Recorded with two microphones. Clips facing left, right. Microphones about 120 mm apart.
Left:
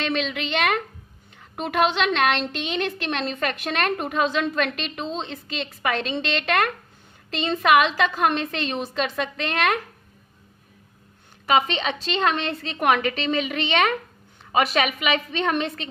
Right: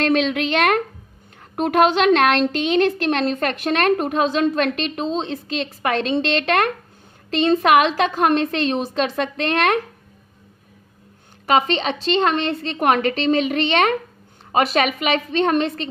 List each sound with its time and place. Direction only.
0.0 s a woman's voice: 45° right (ahead or behind)
11.4 s a woman's voice: 35° right (ahead or behind)
12.8 s a woman's voice: 40° right (ahead or behind)